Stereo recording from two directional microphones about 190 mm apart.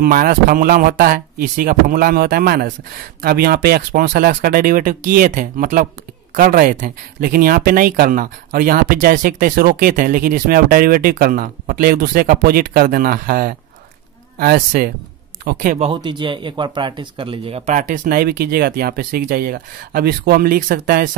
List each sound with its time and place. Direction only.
0.0 s speech: 50° right (ahead or behind)
15.9 s speech: 25° right (ahead or behind); by 21.2 s 45° right (ahead or behind)